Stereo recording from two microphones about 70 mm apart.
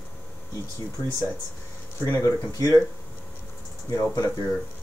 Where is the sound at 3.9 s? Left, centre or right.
Left.